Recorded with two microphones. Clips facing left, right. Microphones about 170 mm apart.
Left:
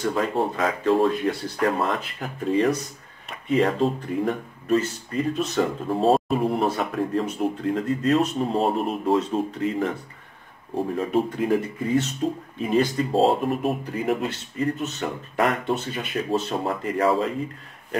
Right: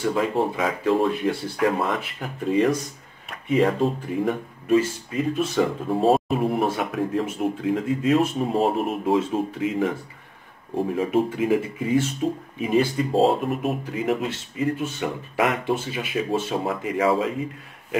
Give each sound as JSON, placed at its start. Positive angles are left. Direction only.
{"t": 0.0, "sound": "speech", "side_deg": 0}